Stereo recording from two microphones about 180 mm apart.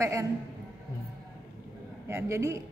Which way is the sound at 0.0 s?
15° right (ahead or behind).